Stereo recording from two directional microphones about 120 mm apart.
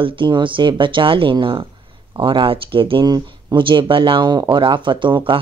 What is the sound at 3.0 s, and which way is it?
Speech, 35° right (ahead or behind).